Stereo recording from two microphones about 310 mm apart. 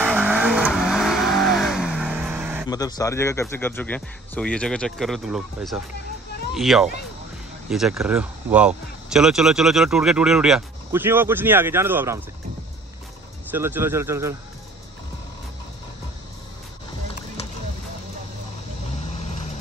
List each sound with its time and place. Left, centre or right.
0.0 s vehicle: centre
2.7 s speech: centre
13.5 s speech: centre
18.9 s vehicle: left